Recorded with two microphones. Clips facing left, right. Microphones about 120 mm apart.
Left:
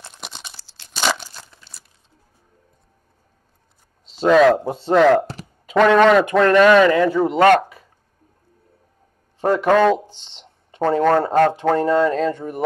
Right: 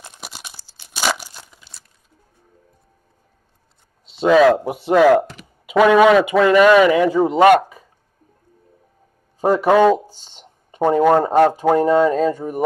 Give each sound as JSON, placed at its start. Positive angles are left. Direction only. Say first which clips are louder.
{"t": 0.0, "sound": "tearing", "louder": "even", "side_deg": -5}
{"t": 1.5, "sound": "a sound", "louder": "even", "side_deg": -5}
{"t": 4.0, "sound": "speech", "louder": "right 1 dB", "side_deg": -5}
{"t": 4.6, "sound": "speech", "louder": "right 1 dB", "side_deg": -15}
{"t": 5.2, "sound": "a sound", "louder": "left 2 dB", "side_deg": 35}
{"t": 5.7, "sound": "speech", "louder": "right 1 dB", "side_deg": -10}
{"t": 9.4, "sound": "speech", "louder": "right 2 dB", "side_deg": -10}